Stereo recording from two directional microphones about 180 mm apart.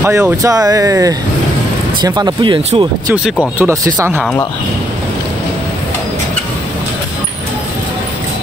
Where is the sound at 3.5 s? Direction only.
15° right (ahead or behind).